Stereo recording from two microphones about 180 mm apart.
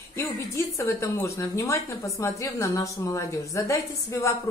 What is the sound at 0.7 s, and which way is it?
A woman's voice, 15° left (ahead or behind).